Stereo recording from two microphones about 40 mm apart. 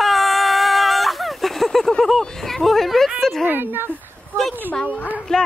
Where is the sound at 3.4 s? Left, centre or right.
Right.